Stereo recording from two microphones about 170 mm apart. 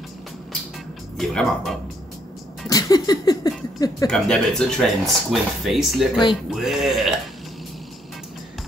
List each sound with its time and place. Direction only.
1.1 s speech: centre (ahead or behind)
2.7 s speech: 20° left (ahead or behind)
4.1 s speech: 5° left (ahead or behind)